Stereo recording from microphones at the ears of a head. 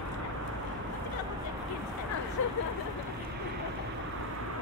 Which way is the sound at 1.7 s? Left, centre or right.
Left.